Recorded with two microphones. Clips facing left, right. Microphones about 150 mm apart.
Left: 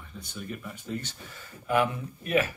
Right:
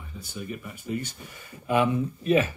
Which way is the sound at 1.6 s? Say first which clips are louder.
Right 3 dB; 20° right (ahead or behind).